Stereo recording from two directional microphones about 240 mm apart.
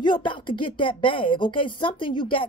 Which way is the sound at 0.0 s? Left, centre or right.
Centre.